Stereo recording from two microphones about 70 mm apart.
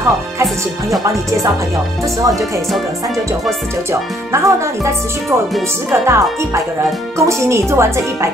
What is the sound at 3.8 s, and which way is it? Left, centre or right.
Speech, right.